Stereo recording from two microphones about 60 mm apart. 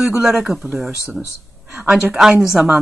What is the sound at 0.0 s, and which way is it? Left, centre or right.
Speech, centre.